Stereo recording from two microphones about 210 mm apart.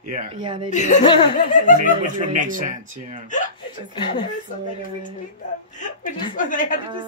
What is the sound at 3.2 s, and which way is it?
Speech, 40° left (ahead or behind).